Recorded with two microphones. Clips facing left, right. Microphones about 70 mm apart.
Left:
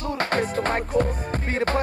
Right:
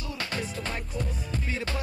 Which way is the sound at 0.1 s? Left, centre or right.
Left.